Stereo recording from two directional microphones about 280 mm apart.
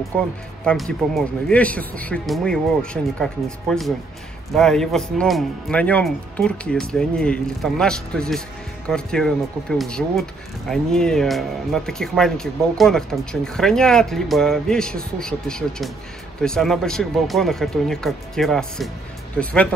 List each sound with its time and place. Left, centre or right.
0.7 s speech: centre